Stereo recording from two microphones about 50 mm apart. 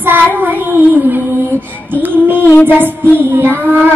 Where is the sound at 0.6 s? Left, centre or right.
Right.